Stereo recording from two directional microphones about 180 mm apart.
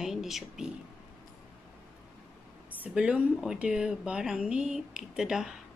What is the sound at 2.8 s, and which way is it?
Speech, 5° right (ahead or behind).